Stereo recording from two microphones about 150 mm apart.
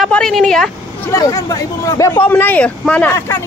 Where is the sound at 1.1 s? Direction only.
20° left (ahead or behind).